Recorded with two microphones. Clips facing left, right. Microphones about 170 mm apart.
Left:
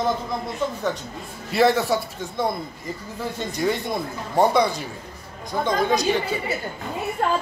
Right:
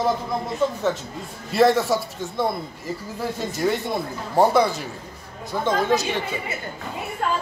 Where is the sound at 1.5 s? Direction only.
Centre (ahead or behind).